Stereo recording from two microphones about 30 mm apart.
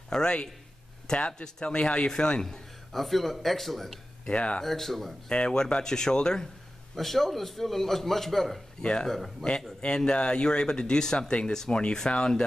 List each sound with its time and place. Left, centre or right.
0.1 s speech: left
2.9 s a man's voice: centre
4.3 s speech: left
4.6 s a man's voice: centre
5.3 s speech: left
7.0 s a man's voice: centre
8.8 s speech: left
9.4 s a man's voice: centre
9.9 s speech: left